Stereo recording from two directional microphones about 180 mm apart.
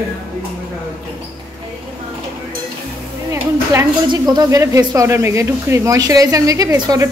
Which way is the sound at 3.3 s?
15° right (ahead or behind).